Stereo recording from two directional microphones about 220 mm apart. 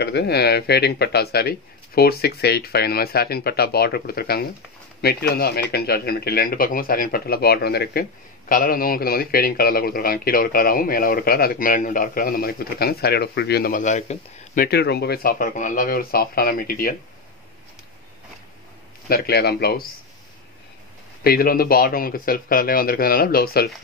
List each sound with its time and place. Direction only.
0.0 s a man's voice: 50° left (ahead or behind)
19.0 s a man's voice: 45° left (ahead or behind)
21.2 s speech: 45° left (ahead or behind)